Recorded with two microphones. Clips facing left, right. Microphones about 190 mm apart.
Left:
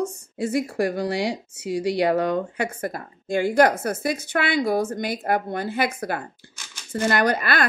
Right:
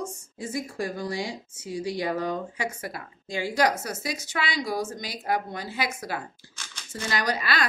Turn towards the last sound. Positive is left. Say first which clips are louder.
# left 6 dB
turn(degrees=55)  # may be behind; listen again after turning